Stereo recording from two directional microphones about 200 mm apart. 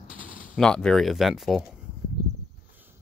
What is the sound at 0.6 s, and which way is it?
Speech, 5° left (ahead or behind).